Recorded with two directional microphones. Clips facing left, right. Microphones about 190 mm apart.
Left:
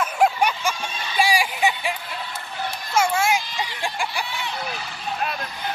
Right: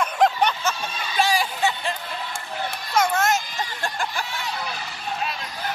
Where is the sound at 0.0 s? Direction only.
10° left (ahead or behind).